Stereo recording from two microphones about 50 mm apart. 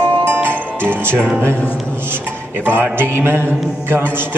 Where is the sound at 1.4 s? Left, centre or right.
Right.